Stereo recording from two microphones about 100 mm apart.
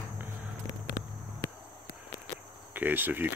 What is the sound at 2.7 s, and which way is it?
Speech, 20° right (ahead or behind).